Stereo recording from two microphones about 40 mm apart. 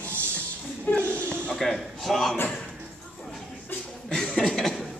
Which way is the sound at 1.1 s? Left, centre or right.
Left.